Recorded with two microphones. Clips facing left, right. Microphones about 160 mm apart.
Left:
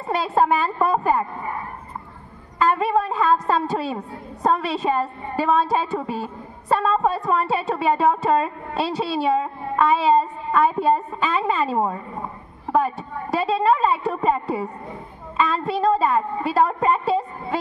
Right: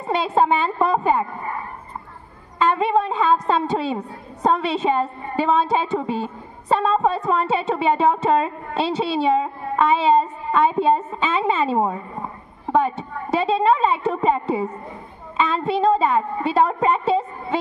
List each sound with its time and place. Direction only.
0.0 s a woman's voice: 20° right (ahead or behind)
2.6 s a woman's voice: 20° right (ahead or behind)